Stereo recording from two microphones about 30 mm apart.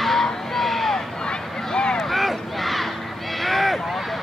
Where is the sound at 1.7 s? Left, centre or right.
Left.